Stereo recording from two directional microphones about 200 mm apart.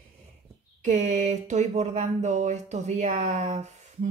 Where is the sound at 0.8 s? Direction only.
40° right (ahead or behind).